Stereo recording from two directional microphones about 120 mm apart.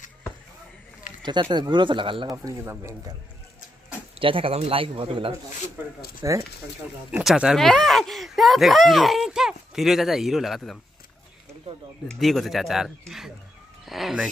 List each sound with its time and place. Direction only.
1.2 s speech: 40° right (ahead or behind)
2.3 s a man's voice: 20° right (ahead or behind)
4.2 s speech: 50° right (ahead or behind)
6.2 s a man's voice: 30° right (ahead or behind)
7.1 s speech: 10° right (ahead or behind)
11.7 s a sound: 60° right (ahead or behind)
12.1 s speech: centre (ahead or behind)